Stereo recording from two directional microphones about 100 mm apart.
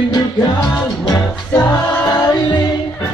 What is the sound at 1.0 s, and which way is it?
Music, 35° left (ahead or behind).